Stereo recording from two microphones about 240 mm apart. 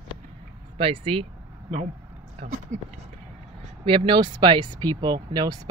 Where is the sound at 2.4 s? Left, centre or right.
Right.